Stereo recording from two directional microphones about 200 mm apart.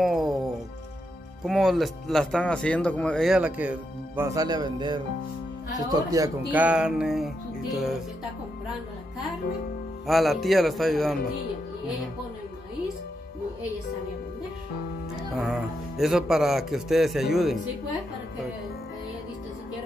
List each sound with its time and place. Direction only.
0.0 s music: centre (ahead or behind)
1.4 s speech: centre (ahead or behind)
10.0 s speech: centre (ahead or behind)
15.3 s speech: centre (ahead or behind)